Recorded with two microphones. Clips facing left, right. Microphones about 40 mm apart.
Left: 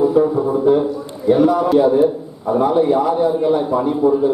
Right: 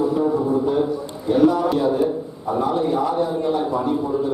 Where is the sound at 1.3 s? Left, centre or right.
Centre.